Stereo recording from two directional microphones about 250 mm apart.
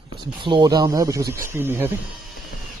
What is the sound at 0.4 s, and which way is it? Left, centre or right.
Speech, centre.